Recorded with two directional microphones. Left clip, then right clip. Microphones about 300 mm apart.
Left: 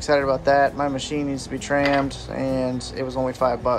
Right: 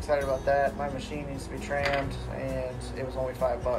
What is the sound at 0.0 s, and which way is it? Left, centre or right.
Speech, left.